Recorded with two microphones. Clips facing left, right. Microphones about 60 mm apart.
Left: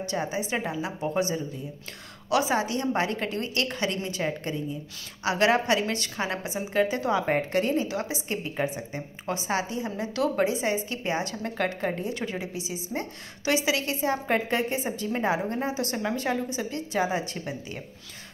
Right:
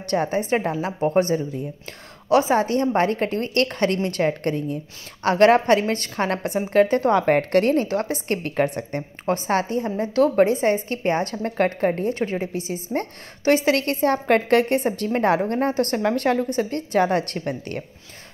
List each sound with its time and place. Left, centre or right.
0.1 s a woman's voice: right
2.2 s a woman's voice: right